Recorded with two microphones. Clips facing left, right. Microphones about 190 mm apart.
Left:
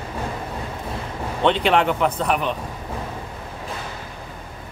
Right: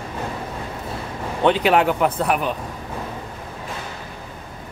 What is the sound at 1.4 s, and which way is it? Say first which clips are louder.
Speech: right 2 dB; 5° right (ahead or behind).